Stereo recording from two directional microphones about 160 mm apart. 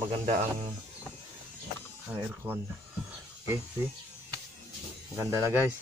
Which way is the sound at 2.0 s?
10° right (ahead or behind).